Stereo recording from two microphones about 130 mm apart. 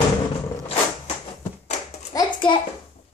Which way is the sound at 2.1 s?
35° left (ahead or behind).